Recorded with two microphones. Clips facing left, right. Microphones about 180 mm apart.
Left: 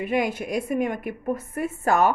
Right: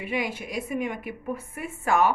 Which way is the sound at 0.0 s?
50° left (ahead or behind).